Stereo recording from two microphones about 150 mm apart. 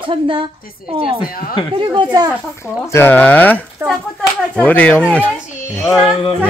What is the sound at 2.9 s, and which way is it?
Sheep, 15° left (ahead or behind).